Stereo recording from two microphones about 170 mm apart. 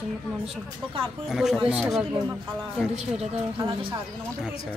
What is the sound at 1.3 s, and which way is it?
Speech, centre (ahead or behind).